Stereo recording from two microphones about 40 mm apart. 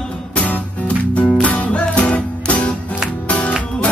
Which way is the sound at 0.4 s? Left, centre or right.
Left.